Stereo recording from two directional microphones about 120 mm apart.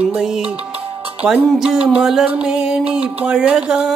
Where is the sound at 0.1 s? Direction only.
5° right (ahead or behind).